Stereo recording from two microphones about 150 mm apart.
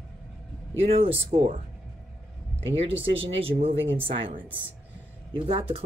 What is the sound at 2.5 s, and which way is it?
Speech, 40° right (ahead or behind).